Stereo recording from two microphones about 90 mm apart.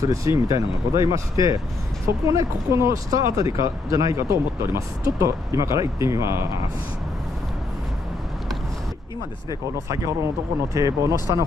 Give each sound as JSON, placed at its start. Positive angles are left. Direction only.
{"t": 0.0, "sound": "speech", "side_deg": -40}
{"t": 9.8, "sound": "speech", "side_deg": -35}